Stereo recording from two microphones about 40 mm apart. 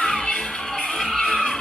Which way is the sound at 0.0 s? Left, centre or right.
Centre.